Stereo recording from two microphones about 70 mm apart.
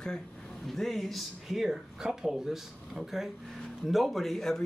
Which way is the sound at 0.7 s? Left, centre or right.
Centre.